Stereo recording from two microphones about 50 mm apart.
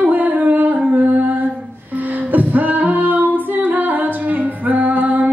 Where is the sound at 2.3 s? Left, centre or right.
Right.